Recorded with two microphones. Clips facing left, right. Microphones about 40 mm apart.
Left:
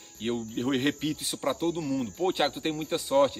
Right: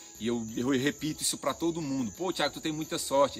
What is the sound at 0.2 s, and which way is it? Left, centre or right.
Speech, left.